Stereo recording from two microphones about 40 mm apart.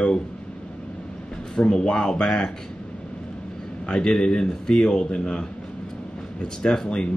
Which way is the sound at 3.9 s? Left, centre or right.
Left.